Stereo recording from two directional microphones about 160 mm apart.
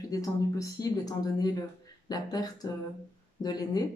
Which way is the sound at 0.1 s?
20° left (ahead or behind).